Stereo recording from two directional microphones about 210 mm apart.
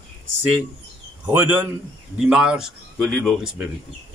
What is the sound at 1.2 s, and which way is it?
A man's voice, 10° right (ahead or behind).